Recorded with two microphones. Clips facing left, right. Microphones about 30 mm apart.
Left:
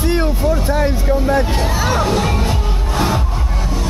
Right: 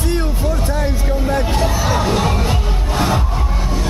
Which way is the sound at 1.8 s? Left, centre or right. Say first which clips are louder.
Left 3 dB; centre.